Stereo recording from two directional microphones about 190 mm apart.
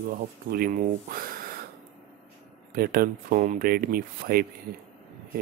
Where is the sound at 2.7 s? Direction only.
50° right (ahead or behind).